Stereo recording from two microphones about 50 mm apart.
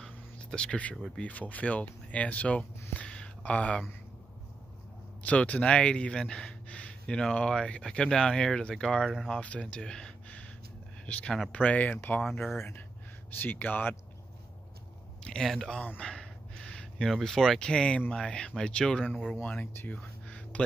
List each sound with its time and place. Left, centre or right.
0.4 s speech: centre
3.1 s a sound: left
5.2 s speech: left
9.3 s speech: left
9.7 s speech: centre
10.2 s gasp: left
11.1 s speech: left
12.2 s speech: centre
13.4 s speech: left
15.4 s speech: centre
16.0 s a sound: centre
17.2 s speech: centre
17.6 s speech: centre
19.9 s music: left